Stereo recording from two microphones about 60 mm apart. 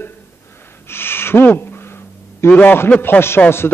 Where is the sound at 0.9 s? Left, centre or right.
Left.